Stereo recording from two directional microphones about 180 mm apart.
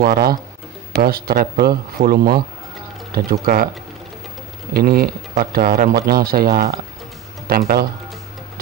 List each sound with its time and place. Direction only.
0.0 s speech: 55° right (ahead or behind)
4.7 s speech: 60° right (ahead or behind)